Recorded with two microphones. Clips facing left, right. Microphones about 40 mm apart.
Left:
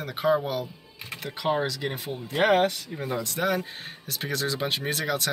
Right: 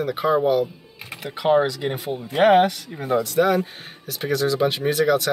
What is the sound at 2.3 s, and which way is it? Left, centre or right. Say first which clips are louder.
Speech: right 6 dB; right.